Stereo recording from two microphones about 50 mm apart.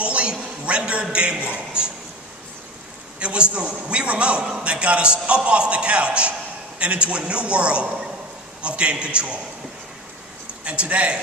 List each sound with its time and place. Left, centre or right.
0.0 s a sound: right
1.1 s a man's voice: right
3.2 s a man's voice: right
10.6 s a man's voice: right